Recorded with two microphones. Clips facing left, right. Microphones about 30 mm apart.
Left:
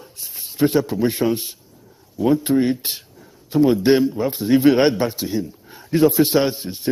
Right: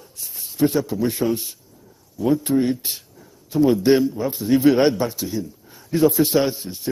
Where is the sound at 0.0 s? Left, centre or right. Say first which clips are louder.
Left 1 dB; left.